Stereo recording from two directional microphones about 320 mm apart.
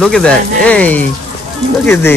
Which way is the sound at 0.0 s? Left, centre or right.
Centre.